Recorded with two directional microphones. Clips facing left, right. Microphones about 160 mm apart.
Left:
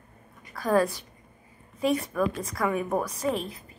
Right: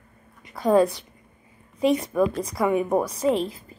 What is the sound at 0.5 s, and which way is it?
A woman's voice, 20° right (ahead or behind).